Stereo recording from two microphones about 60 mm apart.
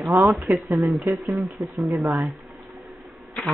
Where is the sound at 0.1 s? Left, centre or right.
Right.